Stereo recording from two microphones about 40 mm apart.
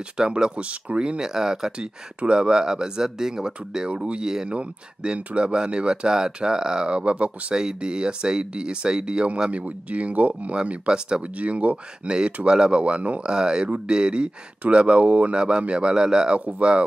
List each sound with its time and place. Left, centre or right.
0.2 s speech: right
7.5 s speech: centre
11.3 s speech: right
13.3 s speech: right
16.3 s speech: right